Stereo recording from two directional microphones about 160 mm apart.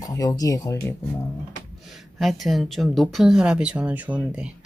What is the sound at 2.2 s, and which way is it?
Speech, centre (ahead or behind).